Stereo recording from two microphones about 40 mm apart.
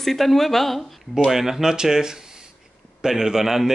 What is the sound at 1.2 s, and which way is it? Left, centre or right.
Speech, centre.